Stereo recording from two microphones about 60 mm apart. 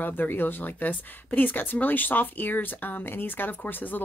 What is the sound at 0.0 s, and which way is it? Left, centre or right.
A woman's voice, left.